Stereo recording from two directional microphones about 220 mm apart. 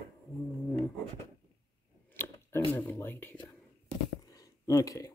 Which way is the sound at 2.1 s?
10° left (ahead or behind).